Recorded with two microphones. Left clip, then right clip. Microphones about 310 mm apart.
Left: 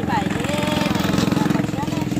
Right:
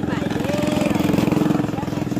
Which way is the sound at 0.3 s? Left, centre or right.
Right.